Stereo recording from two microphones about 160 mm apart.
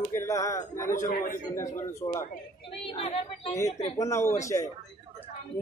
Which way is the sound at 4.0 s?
20° left (ahead or behind).